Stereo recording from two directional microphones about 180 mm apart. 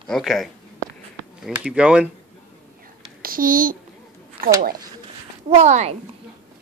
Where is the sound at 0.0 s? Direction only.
Centre (ahead or behind).